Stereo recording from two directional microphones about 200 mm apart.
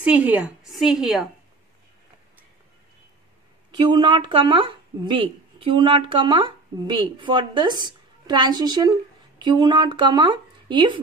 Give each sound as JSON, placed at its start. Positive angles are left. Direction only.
{"t": 0.0, "sound": "a woman's voice", "side_deg": -5}
{"t": 3.7, "sound": "speech", "side_deg": -20}